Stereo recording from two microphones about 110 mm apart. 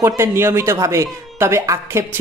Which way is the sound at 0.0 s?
20° right (ahead or behind).